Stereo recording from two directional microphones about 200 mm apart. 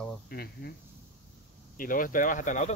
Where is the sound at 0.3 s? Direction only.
55° left (ahead or behind).